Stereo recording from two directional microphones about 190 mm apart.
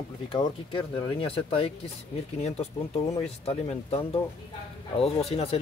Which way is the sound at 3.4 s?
30° left (ahead or behind).